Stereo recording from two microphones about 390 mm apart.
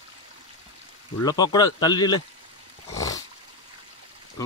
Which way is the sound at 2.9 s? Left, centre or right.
Centre.